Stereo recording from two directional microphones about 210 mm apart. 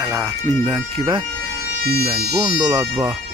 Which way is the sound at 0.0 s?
15° right (ahead or behind).